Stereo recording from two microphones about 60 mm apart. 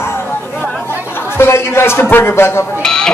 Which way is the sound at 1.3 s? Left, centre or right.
Left.